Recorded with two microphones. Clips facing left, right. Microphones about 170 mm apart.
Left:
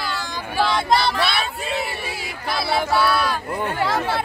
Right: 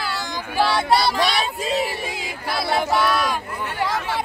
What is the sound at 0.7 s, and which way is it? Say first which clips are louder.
Speech: even; 10° right (ahead or behind).